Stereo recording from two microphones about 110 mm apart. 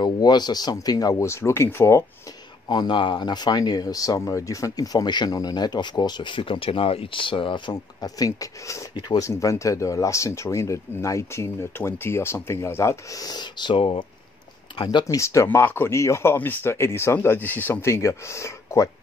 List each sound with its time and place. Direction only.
0.0 s speech: 40° left (ahead or behind); by 2.0 s 25° left (ahead or behind)
2.7 s speech: 45° left (ahead or behind)
15.1 s speech: 30° left (ahead or behind)